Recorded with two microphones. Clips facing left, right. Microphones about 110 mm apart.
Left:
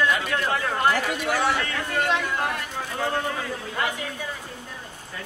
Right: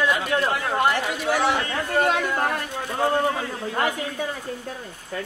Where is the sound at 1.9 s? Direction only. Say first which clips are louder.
Right 4 dB; 40° right (ahead or behind).